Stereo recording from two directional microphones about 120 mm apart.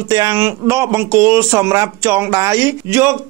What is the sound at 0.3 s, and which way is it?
Speech, 20° right (ahead or behind).